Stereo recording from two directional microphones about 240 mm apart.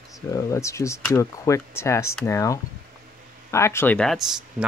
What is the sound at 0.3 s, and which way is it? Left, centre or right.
Speech, centre.